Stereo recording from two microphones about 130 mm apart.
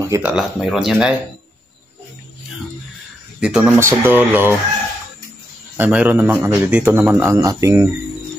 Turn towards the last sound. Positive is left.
turn(degrees=-25)  # may be behind; listen again after turning